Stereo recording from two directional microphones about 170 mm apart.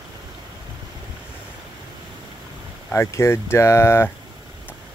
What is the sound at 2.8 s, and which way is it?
Speech, 15° left (ahead or behind).